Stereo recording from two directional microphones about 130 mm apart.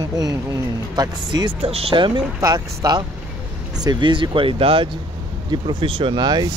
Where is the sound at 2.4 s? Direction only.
30° right (ahead or behind).